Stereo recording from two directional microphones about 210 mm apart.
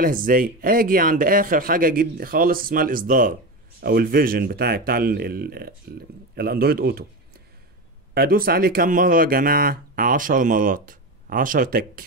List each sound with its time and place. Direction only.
0.0 s speech: 40° right (ahead or behind)
8.1 s speech: 45° right (ahead or behind)